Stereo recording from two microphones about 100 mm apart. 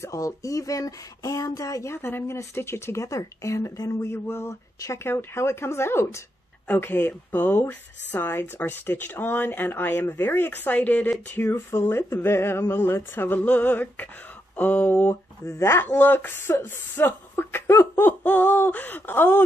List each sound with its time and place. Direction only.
0.0 s speech: 35° left (ahead or behind)